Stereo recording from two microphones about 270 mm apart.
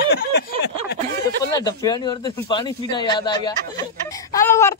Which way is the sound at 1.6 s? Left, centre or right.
Centre.